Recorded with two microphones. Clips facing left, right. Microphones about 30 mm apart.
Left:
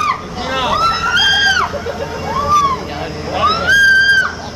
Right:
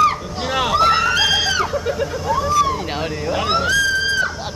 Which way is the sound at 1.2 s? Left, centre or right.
Centre.